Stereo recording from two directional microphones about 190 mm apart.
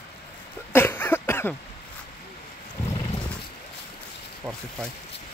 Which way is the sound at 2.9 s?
25° left (ahead or behind).